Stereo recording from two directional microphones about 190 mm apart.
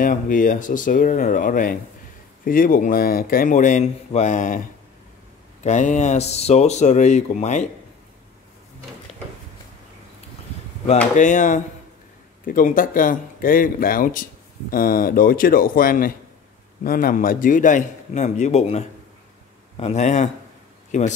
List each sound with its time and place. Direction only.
0.0 s speech: 45° left (ahead or behind)
11.1 s speech: 40° left (ahead or behind)